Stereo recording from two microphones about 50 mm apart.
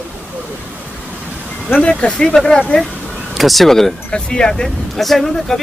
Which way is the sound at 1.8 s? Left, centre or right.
Centre.